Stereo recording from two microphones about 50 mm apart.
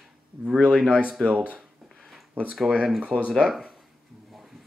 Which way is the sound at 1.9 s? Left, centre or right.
Centre.